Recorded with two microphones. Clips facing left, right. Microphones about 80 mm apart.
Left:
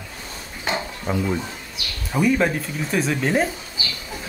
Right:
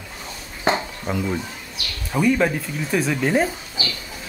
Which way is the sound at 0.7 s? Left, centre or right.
Right.